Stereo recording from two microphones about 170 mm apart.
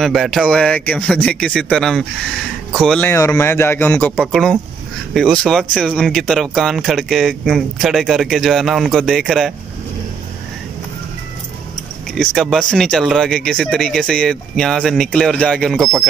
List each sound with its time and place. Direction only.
0.0 s speech: centre (ahead or behind)
3.1 s speech: 15° left (ahead or behind)
12.2 s speech: 5° left (ahead or behind)